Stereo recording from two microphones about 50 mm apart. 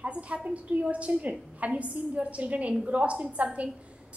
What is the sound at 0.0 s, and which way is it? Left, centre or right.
A woman's voice, right.